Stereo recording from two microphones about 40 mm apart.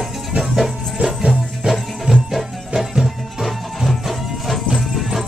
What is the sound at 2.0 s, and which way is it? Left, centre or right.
Music, centre.